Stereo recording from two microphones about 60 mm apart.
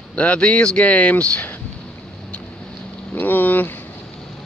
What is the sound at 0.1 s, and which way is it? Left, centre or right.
Speech, left.